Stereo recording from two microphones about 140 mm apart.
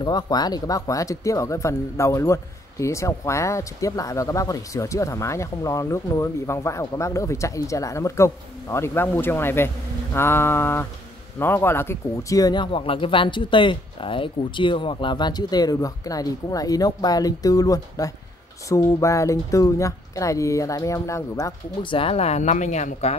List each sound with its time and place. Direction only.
0.0 s speech: 30° left (ahead or behind)
10.1 s mantra: 15° left (ahead or behind)
11.3 s speech: 15° left (ahead or behind)
21.8 s speech: 40° left (ahead or behind)